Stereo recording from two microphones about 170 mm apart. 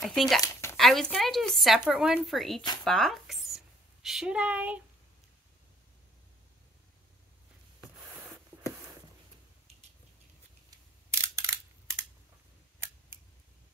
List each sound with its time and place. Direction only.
0.0 s speech: centre (ahead or behind)
0.4 s a sound: 15° left (ahead or behind)
0.7 s speech: centre (ahead or behind)
11.1 s scissors: 15° right (ahead or behind)